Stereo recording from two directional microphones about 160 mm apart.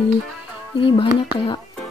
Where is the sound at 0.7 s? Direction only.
35° left (ahead or behind).